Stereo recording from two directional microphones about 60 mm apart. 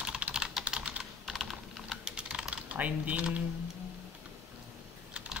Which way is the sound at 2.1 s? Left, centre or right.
Centre.